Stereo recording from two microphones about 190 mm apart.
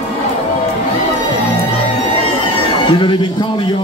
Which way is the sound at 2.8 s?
25° left (ahead or behind).